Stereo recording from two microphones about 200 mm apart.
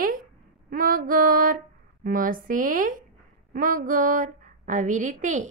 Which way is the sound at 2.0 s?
45° right (ahead or behind).